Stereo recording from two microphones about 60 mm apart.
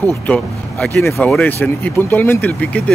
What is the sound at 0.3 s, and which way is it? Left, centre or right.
Speech, left.